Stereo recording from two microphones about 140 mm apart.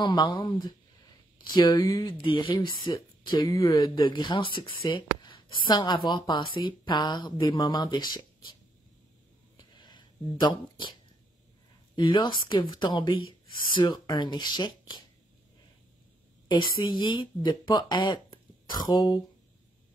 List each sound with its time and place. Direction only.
0.0 s speech: 30° left (ahead or behind)
2.9 s speech: 20° left (ahead or behind)
9.6 s a sound: 30° left (ahead or behind)
11.9 s speech: 35° left (ahead or behind)
16.8 s speech: 35° left (ahead or behind)